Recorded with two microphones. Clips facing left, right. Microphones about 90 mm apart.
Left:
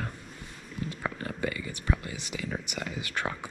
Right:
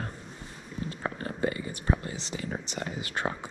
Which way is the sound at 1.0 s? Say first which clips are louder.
Right 3 dB; 30° right (ahead or behind).